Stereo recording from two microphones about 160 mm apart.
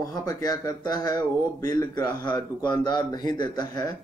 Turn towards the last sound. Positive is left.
turn(degrees=25)  # may be behind; listen again after turning